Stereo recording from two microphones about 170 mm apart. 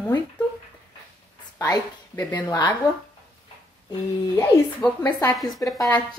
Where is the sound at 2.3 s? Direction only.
25° left (ahead or behind).